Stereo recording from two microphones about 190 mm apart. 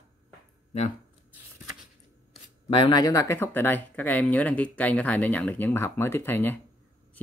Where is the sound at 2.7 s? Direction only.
25° left (ahead or behind).